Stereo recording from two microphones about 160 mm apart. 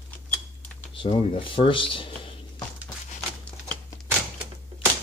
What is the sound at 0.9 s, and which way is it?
Speech, 30° left (ahead or behind).